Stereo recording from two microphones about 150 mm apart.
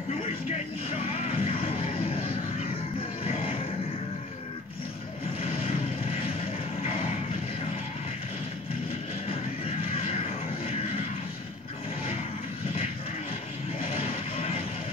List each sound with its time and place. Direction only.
0.2 s music: 40° left (ahead or behind)
3.3 s vehicle: 40° left (ahead or behind)
5.4 s vehicle: 40° left (ahead or behind)
13.8 s music: 40° left (ahead or behind)